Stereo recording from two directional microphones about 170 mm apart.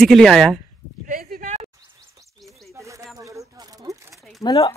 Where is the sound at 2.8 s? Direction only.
20° right (ahead or behind).